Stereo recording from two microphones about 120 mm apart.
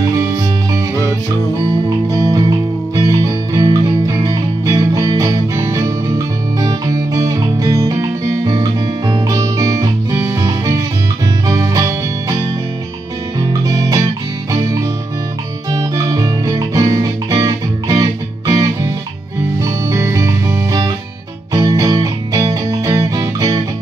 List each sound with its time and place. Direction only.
0.0 s music: 25° right (ahead or behind)
2.0 s music: 30° right (ahead or behind)
13.5 s music: 30° right (ahead or behind)
15.7 s music: 30° right (ahead or behind)
19.6 s music: 25° right (ahead or behind)